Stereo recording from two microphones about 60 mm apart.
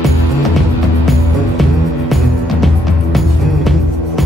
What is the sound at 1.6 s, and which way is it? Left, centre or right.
Music, centre.